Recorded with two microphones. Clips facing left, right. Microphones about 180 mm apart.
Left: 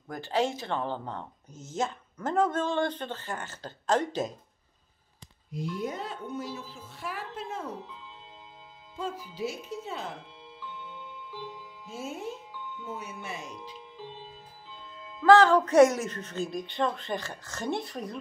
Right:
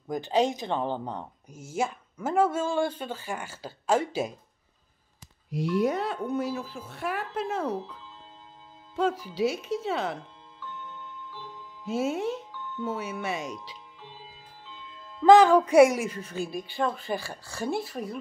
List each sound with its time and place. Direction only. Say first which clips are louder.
0.1 s speech: right 4 dB; 20° right (ahead or behind)
5.5 s speech: right 8 dB; 75° right (ahead or behind)
8.9 s speech: right 9 dB; 80° right
10.6 s tick-tock: right 2 dB; 10° left (ahead or behind)
11.9 s speech: right 9 dB; 80° right
12.8 s speech: right 9 dB; 90° right
15.2 s speech: right 2 dB; 15° right (ahead or behind)